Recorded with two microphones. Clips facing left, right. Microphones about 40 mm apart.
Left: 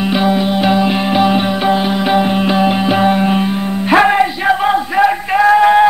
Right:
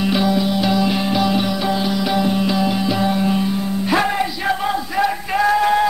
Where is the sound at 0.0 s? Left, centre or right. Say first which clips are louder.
Left 4 dB; left.